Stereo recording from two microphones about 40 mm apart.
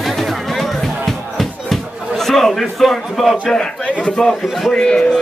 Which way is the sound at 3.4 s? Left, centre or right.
Left.